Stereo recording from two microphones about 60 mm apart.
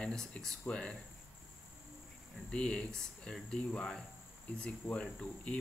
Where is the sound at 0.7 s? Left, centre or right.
Centre.